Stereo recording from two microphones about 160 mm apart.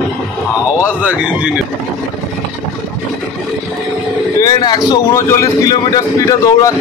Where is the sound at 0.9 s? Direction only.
10° right (ahead or behind).